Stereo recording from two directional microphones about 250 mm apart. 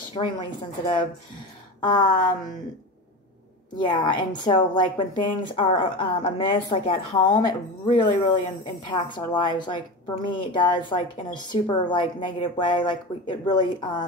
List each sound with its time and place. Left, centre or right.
0.1 s a woman's voice: centre
3.7 s a woman's voice: centre